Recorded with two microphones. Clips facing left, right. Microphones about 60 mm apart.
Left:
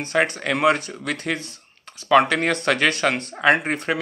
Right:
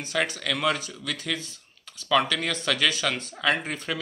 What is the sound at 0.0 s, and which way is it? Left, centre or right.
Speech, left.